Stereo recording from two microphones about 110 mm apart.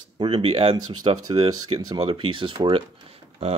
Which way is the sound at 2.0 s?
50° right (ahead or behind).